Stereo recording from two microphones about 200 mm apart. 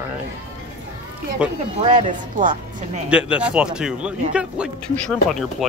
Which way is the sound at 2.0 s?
40° right (ahead or behind).